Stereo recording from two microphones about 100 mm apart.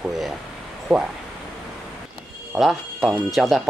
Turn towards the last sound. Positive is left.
turn(degrees=0)  # may be behind; listen again after turning